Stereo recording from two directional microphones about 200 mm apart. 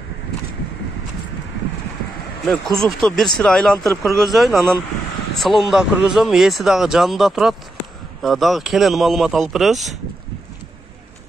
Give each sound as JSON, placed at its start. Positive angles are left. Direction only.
{"t": 2.4, "sound": "a man's voice", "side_deg": 5}